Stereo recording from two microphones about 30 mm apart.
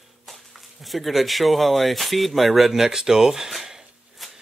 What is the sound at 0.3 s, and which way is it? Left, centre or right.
Speech, centre.